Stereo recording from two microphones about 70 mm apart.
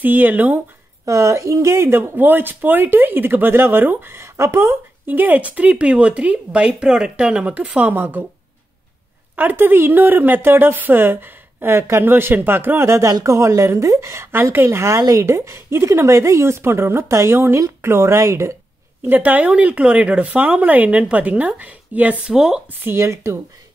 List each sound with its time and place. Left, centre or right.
0.0 s speech: right
1.0 s speech: right
9.3 s a woman's voice: right
15.0 s a woman's voice: right
19.0 s speech: right
22.2 s speech: centre
22.9 s a woman's voice: right